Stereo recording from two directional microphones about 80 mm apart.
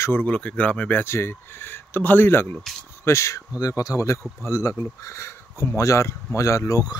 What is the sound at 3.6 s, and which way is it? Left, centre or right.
Speech, left.